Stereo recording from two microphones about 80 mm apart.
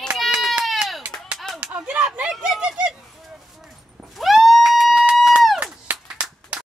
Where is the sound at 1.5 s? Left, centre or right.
Centre.